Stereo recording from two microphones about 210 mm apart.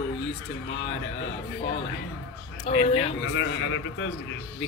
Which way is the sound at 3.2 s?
65° left (ahead or behind).